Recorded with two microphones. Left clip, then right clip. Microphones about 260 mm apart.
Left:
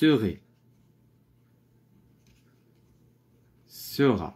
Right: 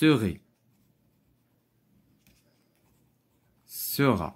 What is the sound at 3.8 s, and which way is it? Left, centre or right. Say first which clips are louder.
Speech: left 1 dB; right.